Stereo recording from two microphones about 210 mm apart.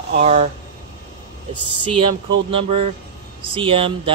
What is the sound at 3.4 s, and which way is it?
Speech, 25° right (ahead or behind).